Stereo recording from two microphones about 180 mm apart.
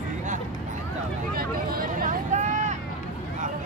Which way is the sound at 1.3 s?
50° right (ahead or behind).